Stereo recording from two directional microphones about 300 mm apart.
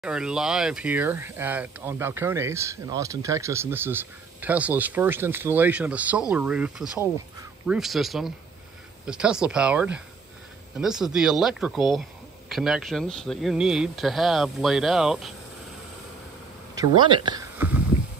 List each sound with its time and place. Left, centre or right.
0.0 s speech: centre
16.7 s speech: centre